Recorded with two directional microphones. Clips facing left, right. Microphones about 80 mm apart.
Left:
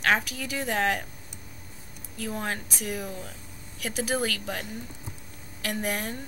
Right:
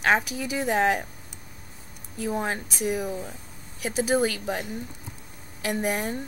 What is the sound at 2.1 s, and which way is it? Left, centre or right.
Speech, centre.